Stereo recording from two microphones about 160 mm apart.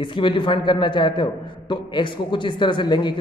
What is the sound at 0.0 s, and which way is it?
A man's voice, 30° left (ahead or behind).